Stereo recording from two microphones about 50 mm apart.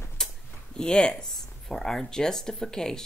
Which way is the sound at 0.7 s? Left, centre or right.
Centre.